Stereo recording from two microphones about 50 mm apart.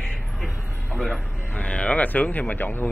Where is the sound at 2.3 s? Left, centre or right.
Left.